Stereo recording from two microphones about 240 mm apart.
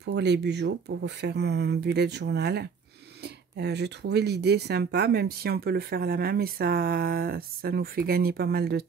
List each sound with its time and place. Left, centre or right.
0.0 s speech: right